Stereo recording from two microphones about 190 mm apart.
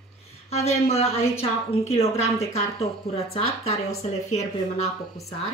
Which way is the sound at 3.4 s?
90° left.